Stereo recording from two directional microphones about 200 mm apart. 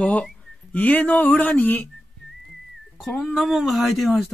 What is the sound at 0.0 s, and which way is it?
Speech, 5° left (ahead or behind).